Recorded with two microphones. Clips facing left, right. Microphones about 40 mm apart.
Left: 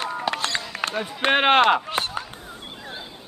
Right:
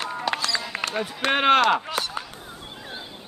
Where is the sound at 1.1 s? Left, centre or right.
Left.